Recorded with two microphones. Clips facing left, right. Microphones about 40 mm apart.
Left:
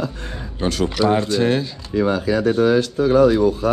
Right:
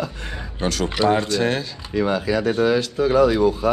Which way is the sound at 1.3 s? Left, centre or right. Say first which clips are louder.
Left 3 dB; right.